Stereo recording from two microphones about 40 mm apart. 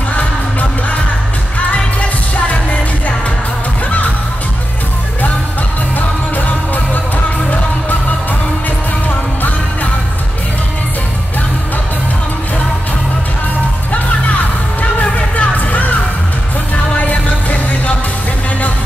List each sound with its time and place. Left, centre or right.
0.1 s music: left
5.9 s music: left
14.8 s music: left
17.0 s music: left